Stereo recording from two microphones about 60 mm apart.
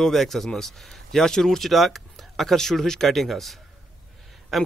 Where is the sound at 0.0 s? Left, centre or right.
Centre.